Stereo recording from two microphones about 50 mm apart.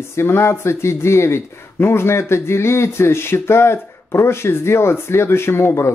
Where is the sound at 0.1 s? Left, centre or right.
Left.